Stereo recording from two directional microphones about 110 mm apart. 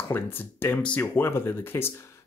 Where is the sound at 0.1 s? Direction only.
20° left (ahead or behind).